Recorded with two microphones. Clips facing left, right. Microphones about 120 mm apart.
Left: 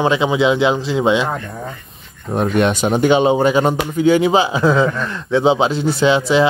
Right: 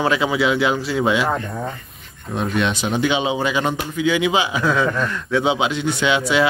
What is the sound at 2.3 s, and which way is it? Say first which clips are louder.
A man's voice: left 5 dB; 50° left (ahead or behind).